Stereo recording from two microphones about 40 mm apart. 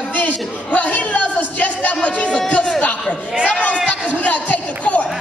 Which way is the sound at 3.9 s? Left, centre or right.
Left.